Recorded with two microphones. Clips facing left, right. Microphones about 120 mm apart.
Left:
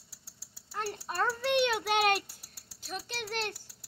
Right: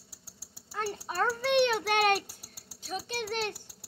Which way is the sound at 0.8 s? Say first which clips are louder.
Right 2 dB; 10° right (ahead or behind).